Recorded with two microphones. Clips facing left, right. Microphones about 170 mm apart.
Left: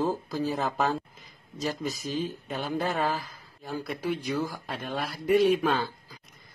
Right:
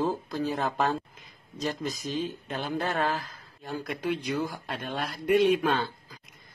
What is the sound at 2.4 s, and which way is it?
Speech, 5° left (ahead or behind).